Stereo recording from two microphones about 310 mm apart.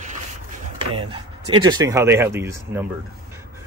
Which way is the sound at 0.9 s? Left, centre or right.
Centre.